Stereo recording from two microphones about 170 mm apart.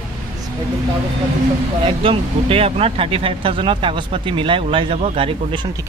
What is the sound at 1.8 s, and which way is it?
Speech, 35° right (ahead or behind).